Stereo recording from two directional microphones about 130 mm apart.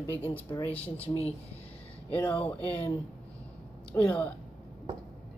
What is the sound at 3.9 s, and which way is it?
Speech, 10° left (ahead or behind).